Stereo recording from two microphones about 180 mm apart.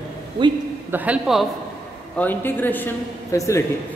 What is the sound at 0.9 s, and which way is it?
Speech, 10° right (ahead or behind).